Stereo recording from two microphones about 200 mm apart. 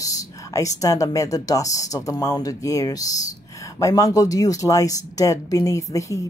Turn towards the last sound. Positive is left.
turn(degrees=15)  # may be behind; listen again after turning